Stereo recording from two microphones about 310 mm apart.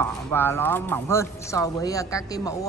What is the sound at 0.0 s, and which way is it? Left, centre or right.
Speech, centre.